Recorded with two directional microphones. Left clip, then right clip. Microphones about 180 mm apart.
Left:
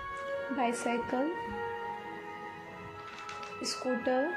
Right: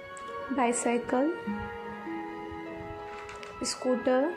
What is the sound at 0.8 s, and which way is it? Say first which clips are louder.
Speech: right 4 dB; 15° right (ahead or behind).